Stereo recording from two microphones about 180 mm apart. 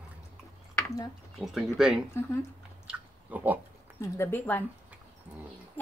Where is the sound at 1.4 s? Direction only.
Centre (ahead or behind).